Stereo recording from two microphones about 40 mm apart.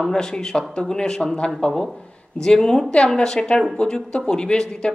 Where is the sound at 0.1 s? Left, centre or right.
Centre.